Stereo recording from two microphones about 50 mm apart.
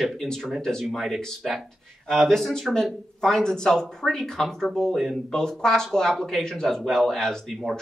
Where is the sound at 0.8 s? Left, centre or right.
Centre.